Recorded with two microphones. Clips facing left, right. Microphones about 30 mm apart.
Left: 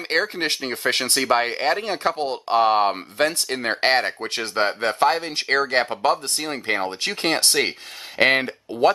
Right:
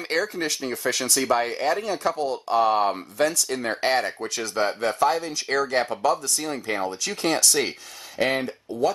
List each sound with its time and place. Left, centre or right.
0.1 s speech: left